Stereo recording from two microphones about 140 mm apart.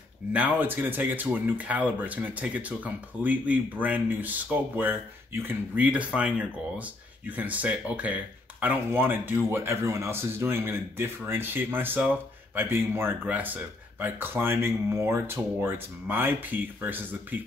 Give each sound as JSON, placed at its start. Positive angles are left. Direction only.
{"t": 0.3, "sound": "speech", "side_deg": -10}